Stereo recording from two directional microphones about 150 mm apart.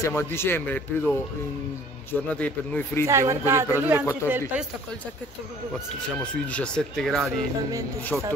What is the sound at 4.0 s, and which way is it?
Speech, 15° left (ahead or behind).